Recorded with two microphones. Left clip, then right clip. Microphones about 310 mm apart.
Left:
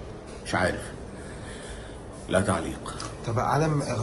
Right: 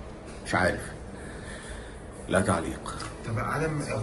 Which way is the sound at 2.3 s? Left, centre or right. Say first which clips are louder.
Left 1 dB; centre.